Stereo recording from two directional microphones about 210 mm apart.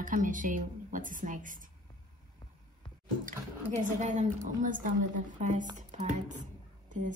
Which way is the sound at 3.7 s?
35° right (ahead or behind).